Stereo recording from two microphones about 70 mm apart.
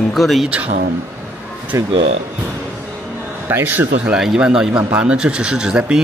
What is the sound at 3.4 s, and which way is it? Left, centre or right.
Speech, right.